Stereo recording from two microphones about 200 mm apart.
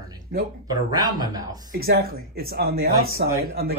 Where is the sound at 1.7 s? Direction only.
50° right (ahead or behind).